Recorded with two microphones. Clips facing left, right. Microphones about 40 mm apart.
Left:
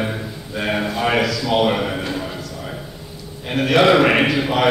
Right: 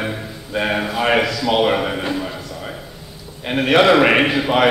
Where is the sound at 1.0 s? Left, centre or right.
Right.